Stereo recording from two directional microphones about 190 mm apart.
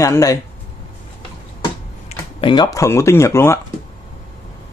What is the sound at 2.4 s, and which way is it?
Speech, 20° left (ahead or behind).